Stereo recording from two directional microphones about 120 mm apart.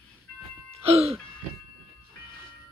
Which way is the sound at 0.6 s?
55° right (ahead or behind).